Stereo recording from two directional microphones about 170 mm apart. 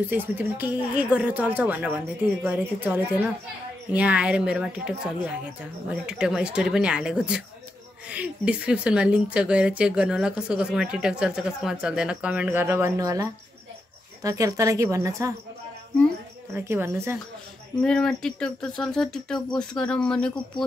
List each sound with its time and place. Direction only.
0.1 s a woman's voice: 10° right (ahead or behind)
16.5 s speech: 15° right (ahead or behind)
17.8 s speech: 5° left (ahead or behind)